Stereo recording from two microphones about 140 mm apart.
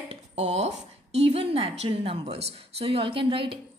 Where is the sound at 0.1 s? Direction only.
50° right (ahead or behind).